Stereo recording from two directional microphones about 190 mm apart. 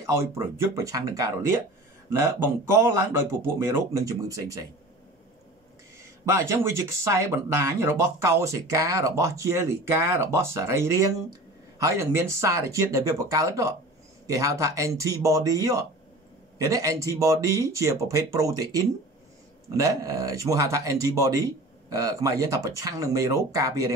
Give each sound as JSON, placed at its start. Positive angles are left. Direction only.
{"t": 0.0, "sound": "speech", "side_deg": -15}
{"t": 6.2, "sound": "speech", "side_deg": -15}